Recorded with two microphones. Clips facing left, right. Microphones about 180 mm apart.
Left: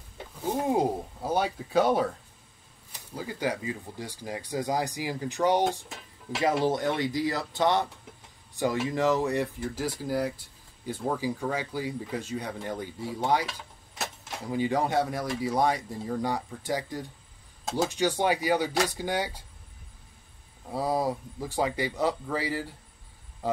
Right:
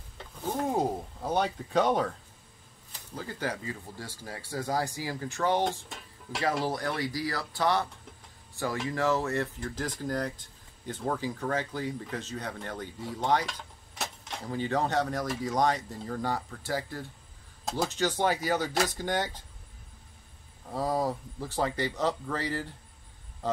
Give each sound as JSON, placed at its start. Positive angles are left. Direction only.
{"t": 0.5, "sound": "a sound", "side_deg": 10}
{"t": 2.9, "sound": "speech", "side_deg": 10}
{"t": 5.7, "sound": "music", "side_deg": 5}
{"t": 6.6, "sound": "speech", "side_deg": 20}
{"t": 8.9, "sound": "speech", "side_deg": 15}
{"t": 20.7, "sound": "speech", "side_deg": 10}